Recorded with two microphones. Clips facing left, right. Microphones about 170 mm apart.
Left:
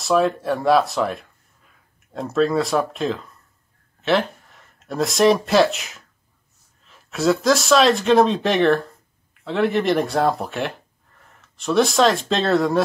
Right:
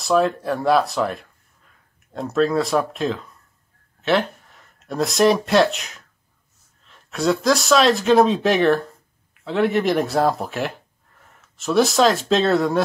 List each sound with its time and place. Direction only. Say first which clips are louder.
0.0 s speech: even; centre (ahead or behind)